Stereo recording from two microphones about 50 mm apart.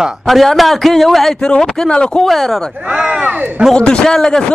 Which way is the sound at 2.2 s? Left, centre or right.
Centre.